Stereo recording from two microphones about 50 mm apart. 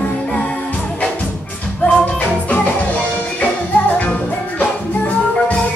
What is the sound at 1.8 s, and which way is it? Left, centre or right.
Music, left.